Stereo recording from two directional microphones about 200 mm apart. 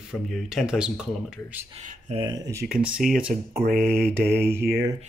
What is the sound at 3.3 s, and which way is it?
Speech, 45° right (ahead or behind).